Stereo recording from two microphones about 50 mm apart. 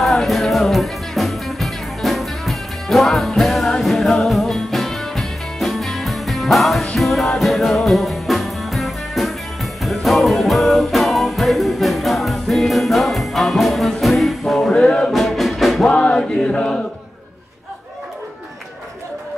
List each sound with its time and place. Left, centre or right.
0.0 s music: centre
14.8 s music: centre
15.9 s chant: left